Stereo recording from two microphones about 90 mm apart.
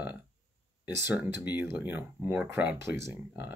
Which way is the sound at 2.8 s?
30° right (ahead or behind).